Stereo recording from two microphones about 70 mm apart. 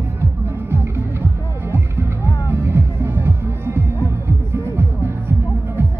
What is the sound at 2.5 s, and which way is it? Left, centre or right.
Music, right.